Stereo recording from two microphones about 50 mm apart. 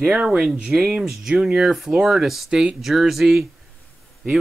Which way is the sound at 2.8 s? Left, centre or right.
Centre.